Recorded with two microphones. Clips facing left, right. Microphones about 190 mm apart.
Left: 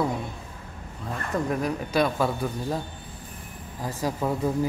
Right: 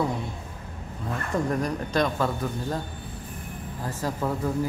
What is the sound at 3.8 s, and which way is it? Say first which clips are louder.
Speech: left 2 dB; 15° left (ahead or behind).